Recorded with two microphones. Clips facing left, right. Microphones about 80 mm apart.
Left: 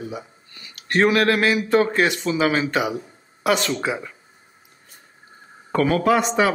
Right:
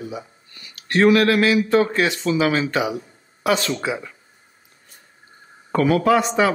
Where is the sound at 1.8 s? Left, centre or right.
Left.